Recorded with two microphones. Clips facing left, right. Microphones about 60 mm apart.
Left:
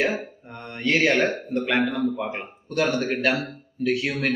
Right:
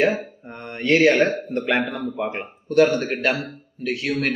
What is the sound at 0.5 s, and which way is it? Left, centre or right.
Mantra, right.